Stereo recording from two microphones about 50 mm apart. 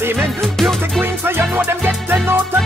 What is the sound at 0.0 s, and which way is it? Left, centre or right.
Music, right.